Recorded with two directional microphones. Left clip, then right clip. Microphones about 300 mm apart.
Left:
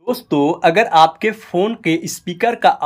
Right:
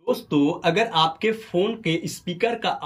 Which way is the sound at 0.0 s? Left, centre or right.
Centre.